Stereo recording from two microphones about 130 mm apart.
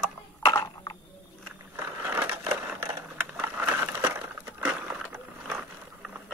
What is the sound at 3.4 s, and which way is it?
Crushing, 15° right (ahead or behind).